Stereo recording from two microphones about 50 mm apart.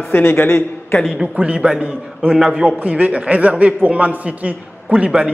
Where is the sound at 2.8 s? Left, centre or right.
Right.